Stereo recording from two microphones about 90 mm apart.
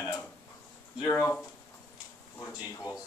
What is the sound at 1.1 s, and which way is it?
Speech, 30° left (ahead or behind).